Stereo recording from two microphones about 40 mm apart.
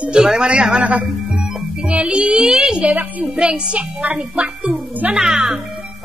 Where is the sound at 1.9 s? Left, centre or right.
Right.